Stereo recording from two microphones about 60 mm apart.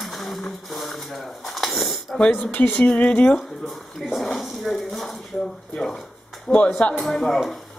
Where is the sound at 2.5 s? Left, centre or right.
Left.